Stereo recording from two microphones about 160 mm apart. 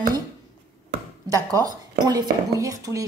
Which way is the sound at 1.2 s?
20° right (ahead or behind).